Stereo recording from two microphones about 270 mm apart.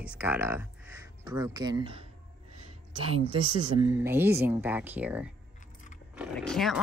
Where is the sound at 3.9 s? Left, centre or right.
Centre.